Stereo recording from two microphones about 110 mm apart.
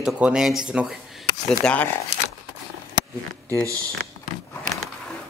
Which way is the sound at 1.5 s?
10° left (ahead or behind).